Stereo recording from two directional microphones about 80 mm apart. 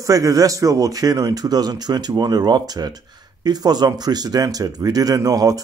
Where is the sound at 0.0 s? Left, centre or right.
Right.